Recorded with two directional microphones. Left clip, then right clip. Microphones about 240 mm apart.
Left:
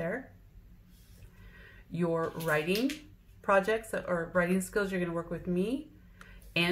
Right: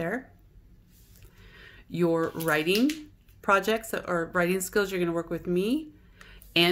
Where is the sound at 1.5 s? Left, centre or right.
Right.